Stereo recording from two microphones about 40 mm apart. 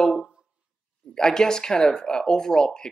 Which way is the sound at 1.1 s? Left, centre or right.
Centre.